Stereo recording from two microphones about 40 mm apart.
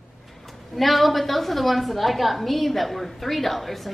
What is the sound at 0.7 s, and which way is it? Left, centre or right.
A woman's voice, centre.